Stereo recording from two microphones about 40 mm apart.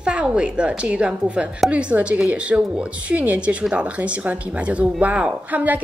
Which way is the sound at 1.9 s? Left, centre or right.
Right.